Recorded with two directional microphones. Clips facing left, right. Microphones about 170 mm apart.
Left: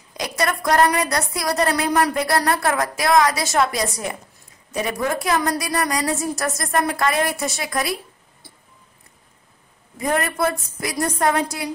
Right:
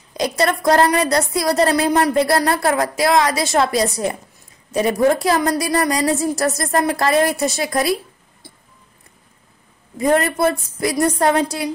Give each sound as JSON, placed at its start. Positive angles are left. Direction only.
{"t": 0.2, "sound": "a woman's voice", "side_deg": -30}
{"t": 9.9, "sound": "a woman's voice", "side_deg": -25}